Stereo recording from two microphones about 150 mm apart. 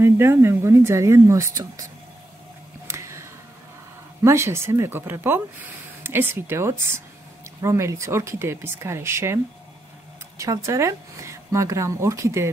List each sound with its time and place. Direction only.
0.0 s speech: 15° right (ahead or behind)
2.9 s a sound: 20° right (ahead or behind)
4.2 s speech: 20° right (ahead or behind)